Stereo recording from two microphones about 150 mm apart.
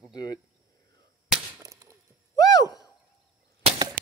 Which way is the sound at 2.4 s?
25° left (ahead or behind).